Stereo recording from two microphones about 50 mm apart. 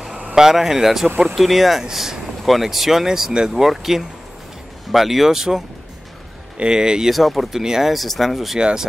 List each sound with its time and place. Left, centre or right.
0.4 s speech: centre
6.6 s speech: centre
7.1 s speech: centre
7.6 s speech: centre
7.9 s speech: centre
8.5 s speech: centre